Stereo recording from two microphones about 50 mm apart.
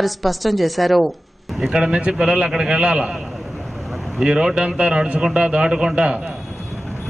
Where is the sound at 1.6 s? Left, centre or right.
Centre.